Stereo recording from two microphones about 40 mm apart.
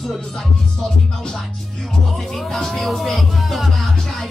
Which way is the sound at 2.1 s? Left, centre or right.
Centre.